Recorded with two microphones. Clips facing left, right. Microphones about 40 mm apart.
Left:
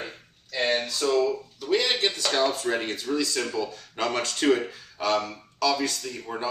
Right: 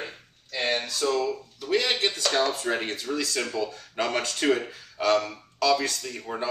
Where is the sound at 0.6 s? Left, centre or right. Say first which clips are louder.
Left 1 dB; centre.